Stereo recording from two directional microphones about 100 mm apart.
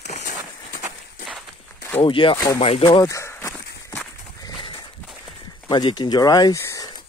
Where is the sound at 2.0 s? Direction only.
60° left (ahead or behind).